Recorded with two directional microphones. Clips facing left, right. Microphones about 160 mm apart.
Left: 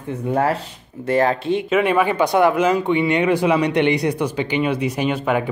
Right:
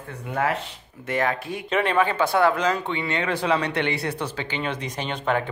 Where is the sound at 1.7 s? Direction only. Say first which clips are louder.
Left 3 dB; 10° left (ahead or behind).